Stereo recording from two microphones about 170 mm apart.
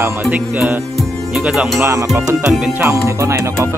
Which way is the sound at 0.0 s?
10° right (ahead or behind).